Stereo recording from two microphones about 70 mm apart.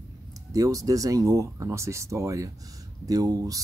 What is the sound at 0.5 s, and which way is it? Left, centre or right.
Speech, right.